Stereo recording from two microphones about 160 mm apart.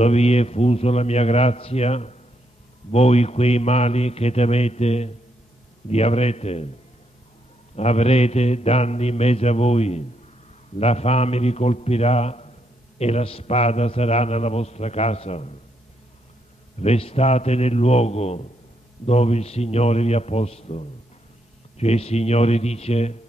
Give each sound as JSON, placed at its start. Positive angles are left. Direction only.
{"t": 0.0, "sound": "a man's voice", "side_deg": 40}
{"t": 7.7, "sound": "a man's voice", "side_deg": 40}
{"t": 16.8, "sound": "a man's voice", "side_deg": 40}